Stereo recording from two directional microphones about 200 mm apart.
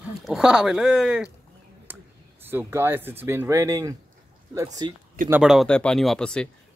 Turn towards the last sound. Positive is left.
turn(degrees=5)  # may be behind; listen again after turning